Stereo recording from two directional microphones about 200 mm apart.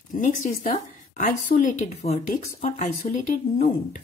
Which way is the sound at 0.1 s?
40° left (ahead or behind).